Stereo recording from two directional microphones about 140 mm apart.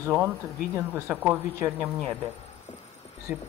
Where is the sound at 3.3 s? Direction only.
10° right (ahead or behind).